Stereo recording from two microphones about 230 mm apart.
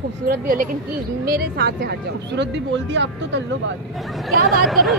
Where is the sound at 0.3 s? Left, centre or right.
Right.